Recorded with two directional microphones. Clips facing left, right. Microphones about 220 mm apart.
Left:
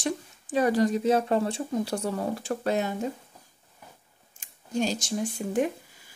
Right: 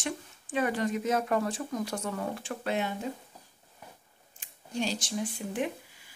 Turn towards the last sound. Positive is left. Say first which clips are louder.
# left 5 dB
turn(degrees=45)  # may be behind; listen again after turning